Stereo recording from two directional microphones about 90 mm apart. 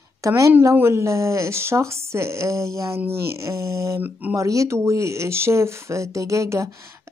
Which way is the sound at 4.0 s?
20° right (ahead or behind).